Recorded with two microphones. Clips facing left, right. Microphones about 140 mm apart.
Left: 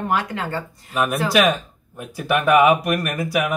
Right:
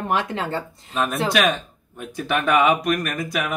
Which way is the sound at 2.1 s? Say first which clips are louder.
Left 3 dB; 10° left (ahead or behind).